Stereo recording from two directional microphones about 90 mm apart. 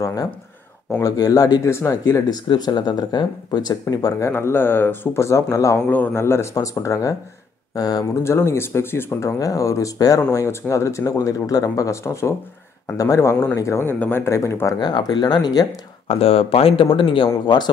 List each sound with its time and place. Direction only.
0.0 s speech: 40° left (ahead or behind)
2.0 s speech: 45° left (ahead or behind)
4.2 s speech: 30° left (ahead or behind)
5.9 s speech: 15° left (ahead or behind)
6.1 s speech: 30° left (ahead or behind)
9.4 s speech: 40° left (ahead or behind)
13.9 s speech: 15° left (ahead or behind)
14.2 s speech: 30° left (ahead or behind)
14.8 s speech: 55° left (ahead or behind)
16.1 s speech: 90° left; by 17.3 s 70° left (ahead or behind)